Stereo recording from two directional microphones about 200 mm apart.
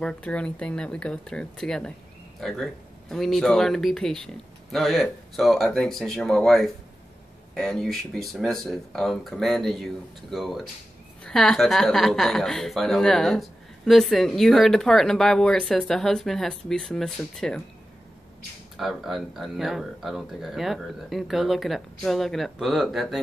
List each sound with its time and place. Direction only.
0.0 s a woman's voice: 5° left (ahead or behind)
18.8 s a woman's voice: centre (ahead or behind)